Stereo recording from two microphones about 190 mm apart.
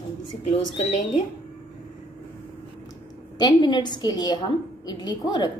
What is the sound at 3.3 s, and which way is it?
A woman's voice, 25° left (ahead or behind).